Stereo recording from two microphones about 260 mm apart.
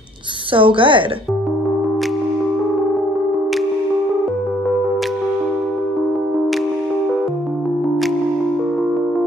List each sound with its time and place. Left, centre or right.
0.5 s a woman's voice: centre